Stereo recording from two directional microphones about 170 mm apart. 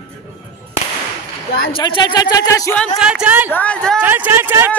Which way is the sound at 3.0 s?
5° right (ahead or behind).